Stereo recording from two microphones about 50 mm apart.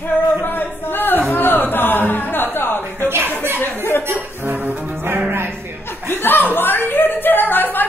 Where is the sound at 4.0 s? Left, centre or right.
Right.